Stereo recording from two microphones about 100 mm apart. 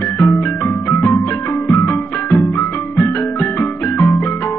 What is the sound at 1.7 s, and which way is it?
Music, 20° left (ahead or behind).